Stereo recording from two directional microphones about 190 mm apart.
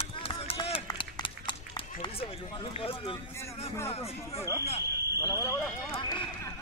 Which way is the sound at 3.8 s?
30° left (ahead or behind).